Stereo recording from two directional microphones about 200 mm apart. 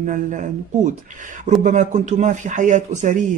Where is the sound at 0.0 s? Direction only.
40° right (ahead or behind).